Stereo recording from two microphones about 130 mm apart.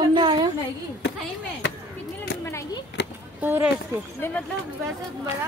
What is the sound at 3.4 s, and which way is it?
Speech, 15° right (ahead or behind).